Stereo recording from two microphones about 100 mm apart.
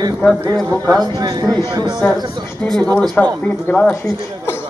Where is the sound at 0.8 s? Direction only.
40° right (ahead or behind).